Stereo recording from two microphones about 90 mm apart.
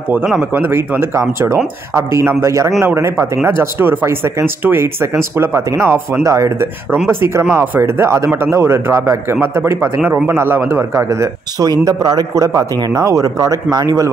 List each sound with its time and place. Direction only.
0.6 s a man's voice: 25° right (ahead or behind)
7.1 s speech: 25° right (ahead or behind)
11.8 s a man's voice: 45° right (ahead or behind)